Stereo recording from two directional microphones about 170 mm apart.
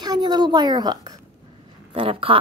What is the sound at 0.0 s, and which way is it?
A woman's voice, 25° right (ahead or behind).